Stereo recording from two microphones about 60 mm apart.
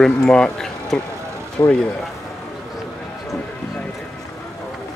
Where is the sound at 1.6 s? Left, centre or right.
Left.